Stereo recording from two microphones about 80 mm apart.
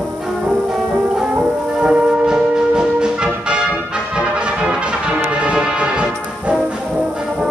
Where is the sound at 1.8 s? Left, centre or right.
Centre.